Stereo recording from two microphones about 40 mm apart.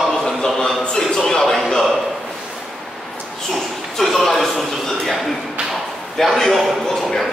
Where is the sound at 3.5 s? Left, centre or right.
Centre.